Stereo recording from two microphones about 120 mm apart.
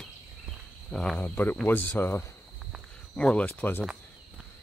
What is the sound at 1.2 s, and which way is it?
Speech, 15° left (ahead or behind).